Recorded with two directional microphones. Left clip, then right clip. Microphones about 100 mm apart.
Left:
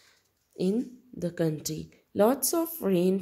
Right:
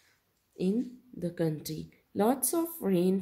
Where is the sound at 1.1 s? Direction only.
30° left (ahead or behind).